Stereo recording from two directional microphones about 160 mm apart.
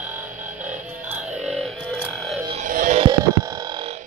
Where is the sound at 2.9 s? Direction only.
25° right (ahead or behind).